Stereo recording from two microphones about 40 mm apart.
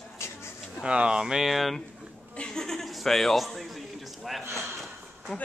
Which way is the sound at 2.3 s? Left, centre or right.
Centre.